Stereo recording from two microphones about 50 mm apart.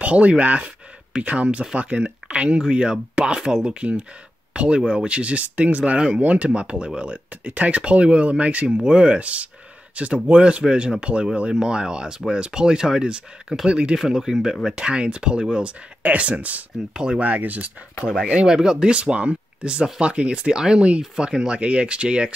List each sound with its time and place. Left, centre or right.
0.0 s speech: right
13.9 s speech: centre
14.9 s speech: right
16.0 s speech: right
16.9 s speech: centre
17.2 s speech: right
18.1 s speech: centre